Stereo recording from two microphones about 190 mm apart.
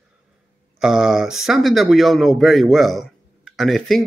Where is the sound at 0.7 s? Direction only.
5° right (ahead or behind).